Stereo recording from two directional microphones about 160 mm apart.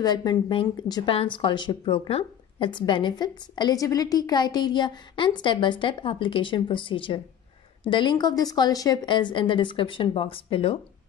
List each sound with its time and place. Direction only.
0.0 s a woman's voice: 25° left (ahead or behind)